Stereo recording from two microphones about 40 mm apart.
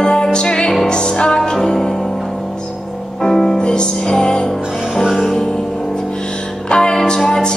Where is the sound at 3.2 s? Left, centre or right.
Centre.